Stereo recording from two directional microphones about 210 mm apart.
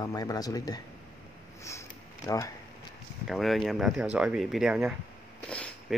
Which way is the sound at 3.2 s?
Centre (ahead or behind).